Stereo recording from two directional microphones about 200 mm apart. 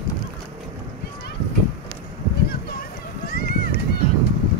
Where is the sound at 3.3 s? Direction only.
50° left (ahead or behind).